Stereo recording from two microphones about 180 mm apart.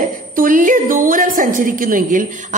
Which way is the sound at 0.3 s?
50° right (ahead or behind).